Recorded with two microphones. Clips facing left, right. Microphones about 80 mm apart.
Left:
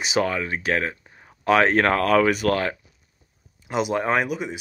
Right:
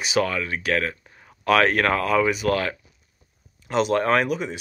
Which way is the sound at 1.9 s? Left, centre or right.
Left.